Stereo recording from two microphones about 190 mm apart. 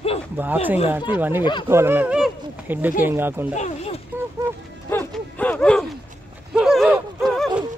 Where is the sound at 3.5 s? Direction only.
35° left (ahead or behind).